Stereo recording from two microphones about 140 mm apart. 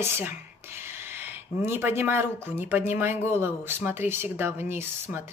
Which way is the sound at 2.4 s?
15° right (ahead or behind).